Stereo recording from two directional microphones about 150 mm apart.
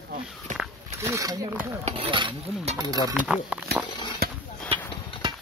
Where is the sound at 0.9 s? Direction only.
20° right (ahead or behind).